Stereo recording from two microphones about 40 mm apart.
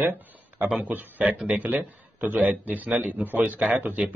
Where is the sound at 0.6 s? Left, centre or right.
Right.